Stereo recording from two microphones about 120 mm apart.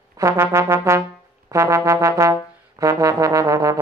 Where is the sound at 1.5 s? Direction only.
25° right (ahead or behind).